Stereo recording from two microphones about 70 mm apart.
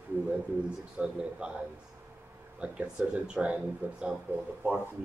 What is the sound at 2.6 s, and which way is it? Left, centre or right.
A man's voice, centre.